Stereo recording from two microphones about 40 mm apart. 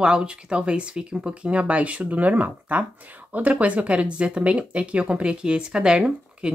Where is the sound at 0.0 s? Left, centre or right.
Right.